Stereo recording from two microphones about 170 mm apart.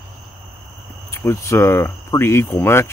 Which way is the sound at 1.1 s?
15° left (ahead or behind).